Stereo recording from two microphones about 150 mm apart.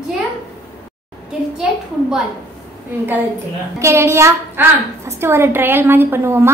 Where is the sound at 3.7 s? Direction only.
20° right (ahead or behind).